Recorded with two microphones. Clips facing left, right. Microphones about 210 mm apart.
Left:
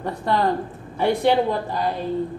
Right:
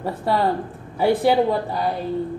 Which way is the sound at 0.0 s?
5° right (ahead or behind).